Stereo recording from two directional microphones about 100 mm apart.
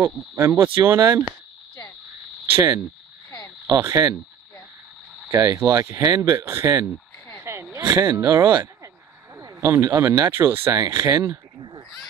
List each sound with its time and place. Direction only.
0.0 s speech: 20° right (ahead or behind)
2.5 s speech: 25° right (ahead or behind)
5.3 s speech: 30° right (ahead or behind)
10.9 s speech: 35° right (ahead or behind)